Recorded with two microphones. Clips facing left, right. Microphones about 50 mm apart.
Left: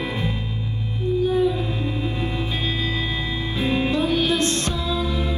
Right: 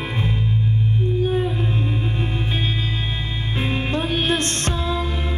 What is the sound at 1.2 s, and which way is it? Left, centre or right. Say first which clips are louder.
Whale vocalization: left 4 dB; right.